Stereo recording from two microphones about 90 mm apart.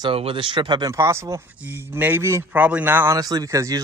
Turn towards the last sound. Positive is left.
turn(degrees=-40)  # may be behind; listen again after turning